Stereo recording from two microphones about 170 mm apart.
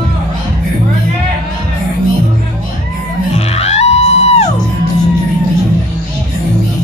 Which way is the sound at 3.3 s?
40° left (ahead or behind).